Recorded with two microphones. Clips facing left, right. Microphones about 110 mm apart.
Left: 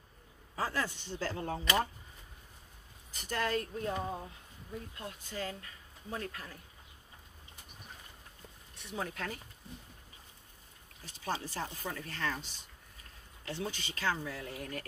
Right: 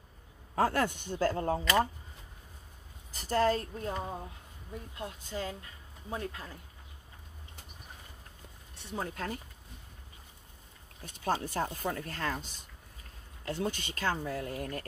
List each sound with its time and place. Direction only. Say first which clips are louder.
0.6 s speech: right 7 dB; 55° right (ahead or behind)
3.1 s a woman's voice: right 7 dB; 35° right (ahead or behind)
4.9 s speech: right 6 dB; 25° right (ahead or behind)
8.7 s a woman's voice: right 2 dB; 35° right (ahead or behind)
11.1 s speech: right 5 dB; 55° right (ahead or behind)